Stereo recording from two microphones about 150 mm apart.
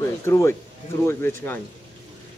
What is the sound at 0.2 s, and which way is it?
Speech, 20° left (ahead or behind).